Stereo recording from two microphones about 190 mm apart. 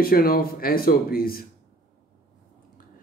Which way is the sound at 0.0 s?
50° left (ahead or behind).